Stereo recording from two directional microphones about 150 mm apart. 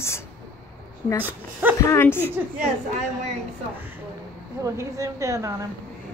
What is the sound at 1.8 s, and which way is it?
Speech, 20° left (ahead or behind).